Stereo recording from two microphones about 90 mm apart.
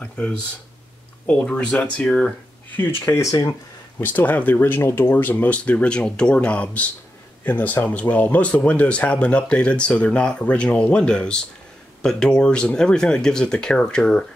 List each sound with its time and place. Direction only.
1.2 s speech: 15° left (ahead or behind)
3.2 s speech: 35° left (ahead or behind)
4.0 s speech: 20° left (ahead or behind)